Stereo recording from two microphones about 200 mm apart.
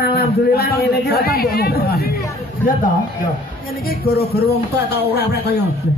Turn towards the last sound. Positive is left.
turn(degrees=55)  # may be behind; listen again after turning